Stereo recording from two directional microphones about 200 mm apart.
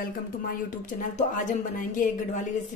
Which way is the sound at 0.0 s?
45° left (ahead or behind).